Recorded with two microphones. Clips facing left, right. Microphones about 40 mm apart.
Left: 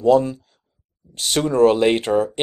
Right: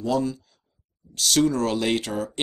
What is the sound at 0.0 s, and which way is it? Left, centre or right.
Speech, left.